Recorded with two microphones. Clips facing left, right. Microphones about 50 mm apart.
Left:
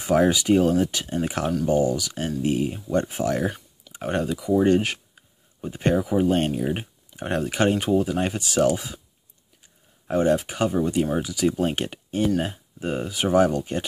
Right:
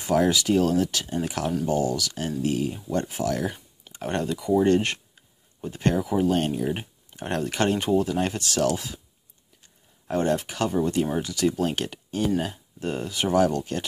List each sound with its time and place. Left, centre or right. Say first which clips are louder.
0.1 s speech: left 2 dB; left
3.9 s speech: left 2 dB; centre
5.6 s speech: left 2 dB; centre
10.0 s speech: left 3 dB; centre
11.6 s speech: left 2 dB; left
12.8 s speech: left 2 dB; centre